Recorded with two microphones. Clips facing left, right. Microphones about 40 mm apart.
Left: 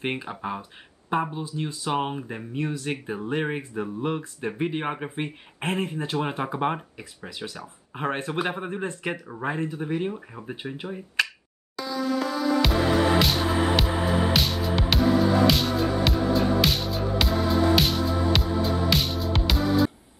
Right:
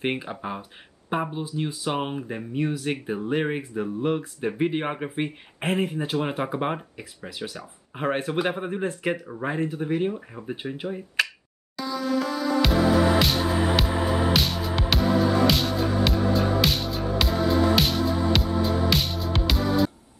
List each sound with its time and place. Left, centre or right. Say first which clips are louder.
0.0 s speech: right 1 dB; centre
1.3 s speech: right 2 dB; centre
1.9 s speech: left 3 dB; centre
2.6 s speech: right 2 dB; centre
10.1 s speech: right 2 dB; centre
11.7 s music: right 1 dB; centre